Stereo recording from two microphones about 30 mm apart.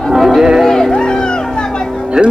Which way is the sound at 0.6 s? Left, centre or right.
Centre.